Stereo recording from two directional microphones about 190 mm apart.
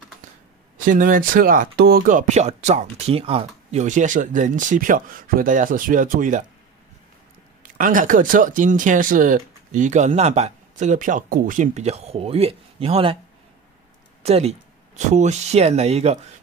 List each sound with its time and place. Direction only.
0.8 s speech: 45° right (ahead or behind)
7.7 s speech: 45° right (ahead or behind); by 13.2 s 30° right (ahead or behind)
14.2 s speech: 35° right (ahead or behind)